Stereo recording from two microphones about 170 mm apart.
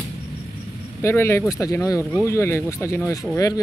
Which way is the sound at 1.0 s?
15° left (ahead or behind).